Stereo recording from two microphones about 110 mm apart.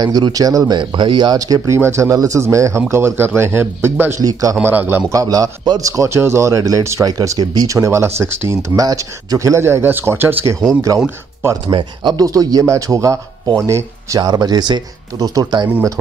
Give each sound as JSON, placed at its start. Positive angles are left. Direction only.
{"t": 0.0, "sound": "speech", "side_deg": -35}
{"t": 0.7, "sound": "speech", "side_deg": -45}
{"t": 4.2, "sound": "speech", "side_deg": -35}
{"t": 4.6, "sound": "speech", "side_deg": -20}
{"t": 5.1, "sound": "speech", "side_deg": -30}
{"t": 11.6, "sound": "speech", "side_deg": -45}